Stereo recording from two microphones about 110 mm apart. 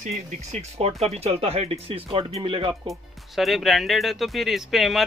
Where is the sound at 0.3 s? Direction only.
85° right; by 2.7 s 50° right (ahead or behind).